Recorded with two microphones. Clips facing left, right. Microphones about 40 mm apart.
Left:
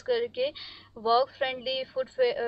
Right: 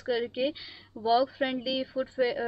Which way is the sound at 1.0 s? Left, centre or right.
Left.